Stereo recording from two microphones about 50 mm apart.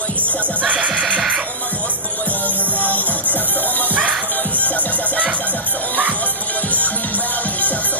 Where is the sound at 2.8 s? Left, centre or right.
Left.